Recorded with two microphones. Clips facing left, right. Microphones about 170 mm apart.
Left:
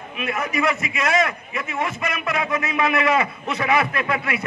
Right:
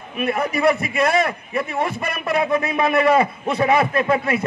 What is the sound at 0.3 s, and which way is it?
Speech, 35° right (ahead or behind).